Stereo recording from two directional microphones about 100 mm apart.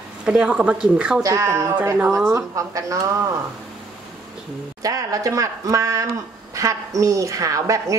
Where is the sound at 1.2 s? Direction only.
30° right (ahead or behind).